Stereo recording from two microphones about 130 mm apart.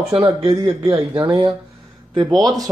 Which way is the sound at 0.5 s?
30° right (ahead or behind).